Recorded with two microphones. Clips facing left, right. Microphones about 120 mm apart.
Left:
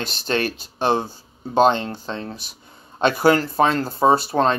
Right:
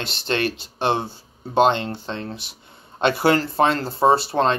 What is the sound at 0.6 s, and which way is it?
Speech, 25° right (ahead or behind).